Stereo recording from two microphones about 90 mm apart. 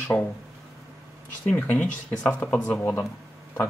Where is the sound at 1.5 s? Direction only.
15° left (ahead or behind).